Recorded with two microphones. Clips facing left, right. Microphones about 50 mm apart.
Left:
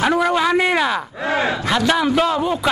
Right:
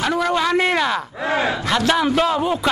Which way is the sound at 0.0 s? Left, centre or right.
Centre.